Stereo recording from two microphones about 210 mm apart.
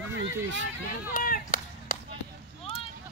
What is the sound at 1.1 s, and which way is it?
Chop, 40° left (ahead or behind).